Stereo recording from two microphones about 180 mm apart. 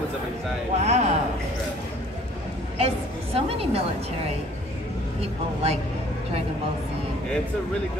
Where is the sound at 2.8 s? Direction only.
35° right (ahead or behind).